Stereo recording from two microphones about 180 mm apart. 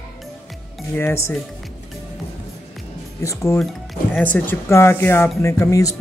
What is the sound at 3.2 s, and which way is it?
Speech, 15° left (ahead or behind).